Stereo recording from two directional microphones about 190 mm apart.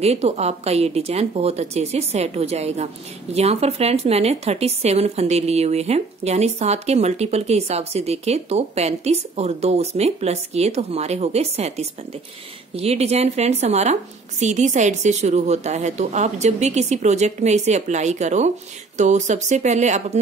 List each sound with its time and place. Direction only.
0.0 s speech: 35° right (ahead or behind)